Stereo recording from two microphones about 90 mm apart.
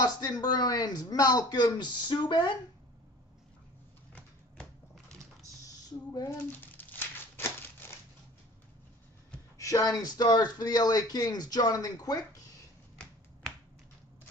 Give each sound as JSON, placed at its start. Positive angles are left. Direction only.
{"t": 0.0, "sound": "speech", "side_deg": 45}
{"t": 4.1, "sound": "typewriter", "side_deg": 10}
{"t": 6.3, "sound": "a sound", "side_deg": 20}
{"t": 9.6, "sound": "speech", "side_deg": 40}